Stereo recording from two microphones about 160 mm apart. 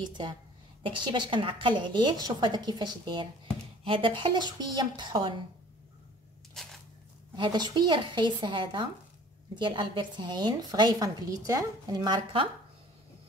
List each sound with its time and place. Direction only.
0.8 s a woman's voice: 30° right (ahead or behind)
6.6 s a sound: centre (ahead or behind)
7.3 s a woman's voice: 30° right (ahead or behind)